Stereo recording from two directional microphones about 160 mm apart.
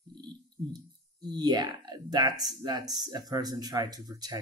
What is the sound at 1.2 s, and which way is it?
Speech, 25° right (ahead or behind).